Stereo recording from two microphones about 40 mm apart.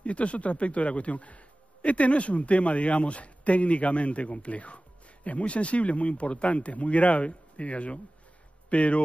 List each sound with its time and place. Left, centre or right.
0.0 s a man's voice: left